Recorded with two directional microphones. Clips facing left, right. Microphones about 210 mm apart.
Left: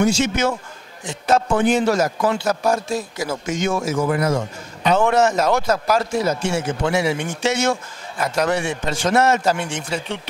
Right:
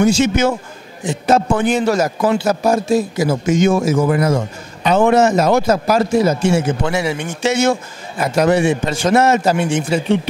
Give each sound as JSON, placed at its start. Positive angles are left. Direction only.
{"t": 0.0, "sound": "a man's voice", "side_deg": -5}
{"t": 3.9, "sound": "speech", "side_deg": -20}
{"t": 4.8, "sound": "a man's voice", "side_deg": -5}